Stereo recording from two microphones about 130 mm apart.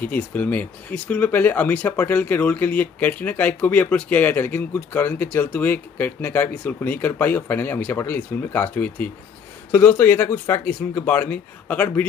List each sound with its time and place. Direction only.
0.0 s speech: 10° left (ahead or behind)